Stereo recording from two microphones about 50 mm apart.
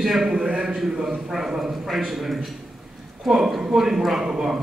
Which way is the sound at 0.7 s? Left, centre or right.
Centre.